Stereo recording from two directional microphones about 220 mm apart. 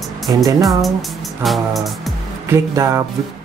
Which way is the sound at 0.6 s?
Centre (ahead or behind).